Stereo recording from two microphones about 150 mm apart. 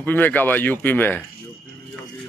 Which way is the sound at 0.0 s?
10° left (ahead or behind).